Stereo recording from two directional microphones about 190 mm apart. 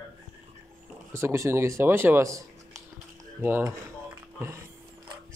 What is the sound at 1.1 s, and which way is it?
A man's voice, 15° right (ahead or behind).